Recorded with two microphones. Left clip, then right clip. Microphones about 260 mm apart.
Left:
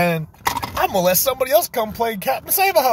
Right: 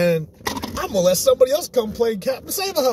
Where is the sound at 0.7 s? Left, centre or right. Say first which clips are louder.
Even; centre.